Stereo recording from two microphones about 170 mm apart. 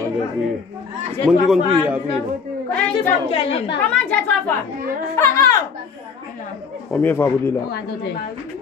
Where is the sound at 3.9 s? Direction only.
10° left (ahead or behind).